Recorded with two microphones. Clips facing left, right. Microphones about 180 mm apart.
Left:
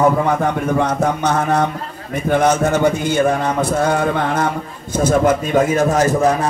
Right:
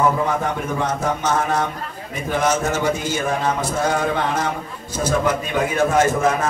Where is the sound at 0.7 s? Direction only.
60° left (ahead or behind).